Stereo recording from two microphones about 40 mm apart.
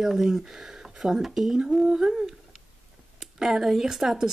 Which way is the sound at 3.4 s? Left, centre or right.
Centre.